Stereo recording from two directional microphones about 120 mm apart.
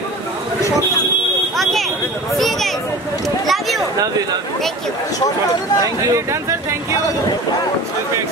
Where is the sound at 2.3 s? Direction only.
Centre (ahead or behind).